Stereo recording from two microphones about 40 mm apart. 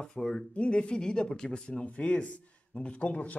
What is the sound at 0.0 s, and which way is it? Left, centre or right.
Speech, centre.